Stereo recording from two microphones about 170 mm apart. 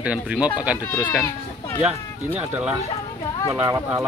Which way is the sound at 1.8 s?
10° right (ahead or behind).